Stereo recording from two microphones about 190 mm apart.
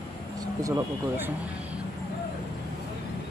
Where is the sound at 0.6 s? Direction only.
15° right (ahead or behind).